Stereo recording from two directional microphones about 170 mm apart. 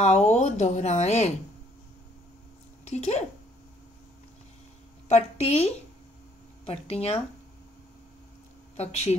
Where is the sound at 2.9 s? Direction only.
40° left (ahead or behind).